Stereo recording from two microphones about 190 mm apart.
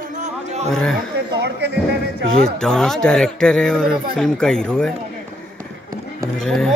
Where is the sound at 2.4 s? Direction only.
5° left (ahead or behind).